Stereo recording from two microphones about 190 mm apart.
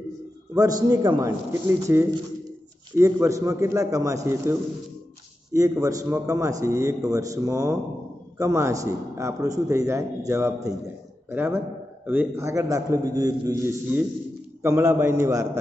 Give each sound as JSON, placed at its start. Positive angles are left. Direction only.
{"t": 0.6, "sound": "a man's voice", "side_deg": -20}